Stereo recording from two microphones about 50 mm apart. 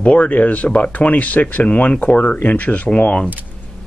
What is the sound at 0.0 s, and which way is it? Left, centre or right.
Speech, left.